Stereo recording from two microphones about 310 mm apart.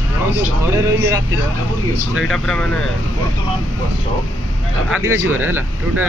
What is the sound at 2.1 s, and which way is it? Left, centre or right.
Speech, centre.